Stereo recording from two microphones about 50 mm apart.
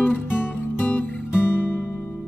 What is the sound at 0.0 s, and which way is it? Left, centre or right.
Music, left.